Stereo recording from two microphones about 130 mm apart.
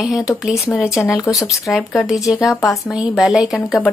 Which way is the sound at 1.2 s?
25° left (ahead or behind).